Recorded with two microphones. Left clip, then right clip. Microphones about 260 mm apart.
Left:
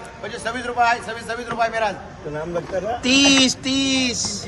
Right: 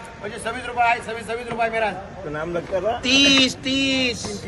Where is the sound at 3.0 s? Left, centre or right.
Left.